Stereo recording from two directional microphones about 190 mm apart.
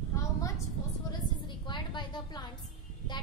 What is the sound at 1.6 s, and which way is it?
Speech, 25° left (ahead or behind).